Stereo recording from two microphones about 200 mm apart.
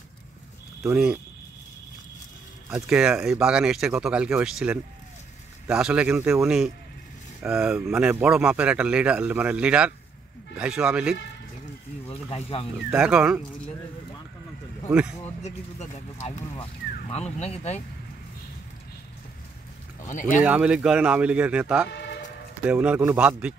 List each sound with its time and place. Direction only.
0.8 s speech: 5° right (ahead or behind)
2.7 s speech: 5° right (ahead or behind)
12.1 s speech: 30° left (ahead or behind)
12.9 s speech: 5° right (ahead or behind)
14.9 s speech: 5° right (ahead or behind)
15.4 s speech: 35° left (ahead or behind)
20.0 s speech: 40° left (ahead or behind)
20.4 s a man's voice: 5° right (ahead or behind)